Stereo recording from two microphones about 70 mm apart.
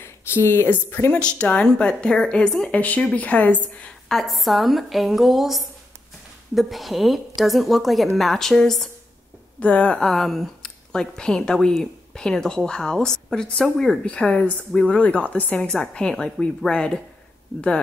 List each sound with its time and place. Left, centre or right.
0.0 s speech: left
1.1 s a woman's voice: centre
2.8 s speech: left
4.1 s a woman's voice: centre
9.6 s speech: left
9.9 s a woman's voice: centre